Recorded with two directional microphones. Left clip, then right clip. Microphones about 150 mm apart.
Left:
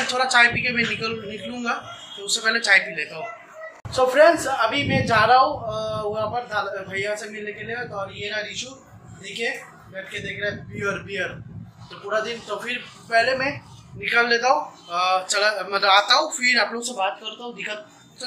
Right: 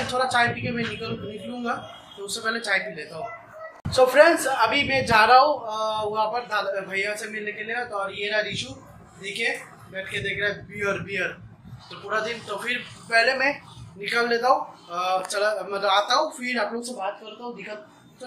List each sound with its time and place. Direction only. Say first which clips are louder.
0.1 s speech: left 5 dB; centre (ahead or behind); by 7.8 s 20° right (ahead or behind)
8.2 s a man's voice: right 4 dB; 30° right (ahead or behind)
10.8 s speech: even; 10° right (ahead or behind)
14.9 s speech: left 4 dB; centre (ahead or behind)